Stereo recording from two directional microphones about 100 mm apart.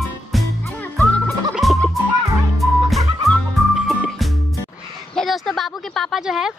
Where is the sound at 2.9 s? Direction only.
Centre (ahead or behind).